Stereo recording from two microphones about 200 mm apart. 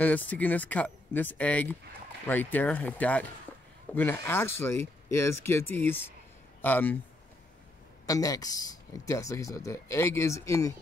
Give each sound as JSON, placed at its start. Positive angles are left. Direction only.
{"t": 0.0, "sound": "speech", "side_deg": 10}
{"t": 8.1, "sound": "speech", "side_deg": 20}